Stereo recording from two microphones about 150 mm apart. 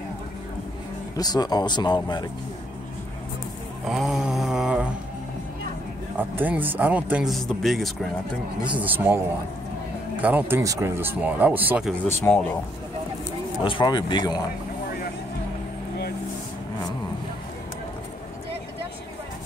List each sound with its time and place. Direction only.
1.1 s speech: 25° left (ahead or behind)
3.8 s mantra: centre (ahead or behind)
6.1 s speech: 10° right (ahead or behind)
8.7 s speech: 10° right (ahead or behind)
12.3 s speech: 10° left (ahead or behind)
13.6 s speech: 35° left (ahead or behind)